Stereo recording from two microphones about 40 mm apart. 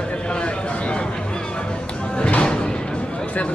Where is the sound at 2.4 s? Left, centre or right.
Left.